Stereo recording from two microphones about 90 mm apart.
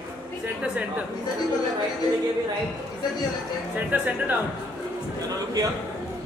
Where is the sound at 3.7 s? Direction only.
20° right (ahead or behind).